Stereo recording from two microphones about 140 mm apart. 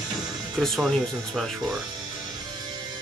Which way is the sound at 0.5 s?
Centre (ahead or behind).